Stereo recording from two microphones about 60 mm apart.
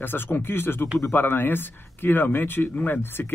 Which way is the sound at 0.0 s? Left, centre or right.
Left.